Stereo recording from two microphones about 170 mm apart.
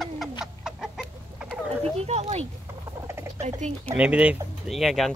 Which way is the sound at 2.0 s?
40° right (ahead or behind).